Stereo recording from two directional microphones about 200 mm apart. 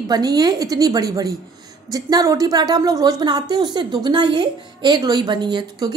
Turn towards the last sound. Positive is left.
turn(degrees=-20)  # may be behind; listen again after turning